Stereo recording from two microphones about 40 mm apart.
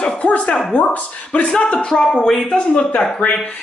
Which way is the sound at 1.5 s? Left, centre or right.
Left.